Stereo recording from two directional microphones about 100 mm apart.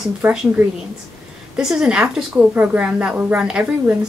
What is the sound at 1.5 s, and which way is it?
A woman's voice, 5° right (ahead or behind).